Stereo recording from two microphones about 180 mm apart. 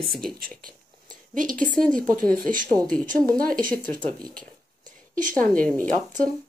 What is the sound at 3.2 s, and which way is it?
Speech, 50° right (ahead or behind).